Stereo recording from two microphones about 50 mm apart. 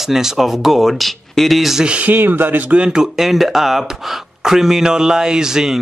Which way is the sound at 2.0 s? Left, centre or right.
Right.